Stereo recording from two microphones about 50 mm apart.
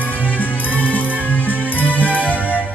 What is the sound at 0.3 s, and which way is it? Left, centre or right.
Music, left.